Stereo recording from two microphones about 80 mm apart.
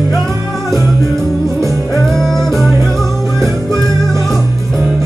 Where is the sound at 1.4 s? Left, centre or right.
Right.